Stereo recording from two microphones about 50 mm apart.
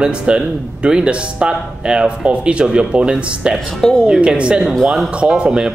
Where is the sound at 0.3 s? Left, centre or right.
Centre.